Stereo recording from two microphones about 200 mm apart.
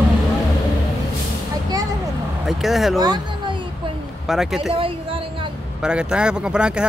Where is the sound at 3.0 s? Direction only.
20° right (ahead or behind).